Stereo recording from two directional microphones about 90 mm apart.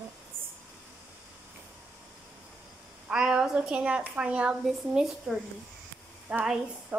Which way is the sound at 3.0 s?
10° right (ahead or behind).